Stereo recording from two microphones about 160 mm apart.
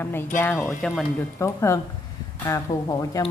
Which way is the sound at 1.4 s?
15° left (ahead or behind).